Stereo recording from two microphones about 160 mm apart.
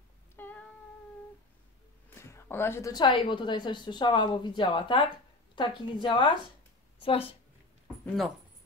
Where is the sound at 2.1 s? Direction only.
15° left (ahead or behind); by 7.3 s 35° left (ahead or behind).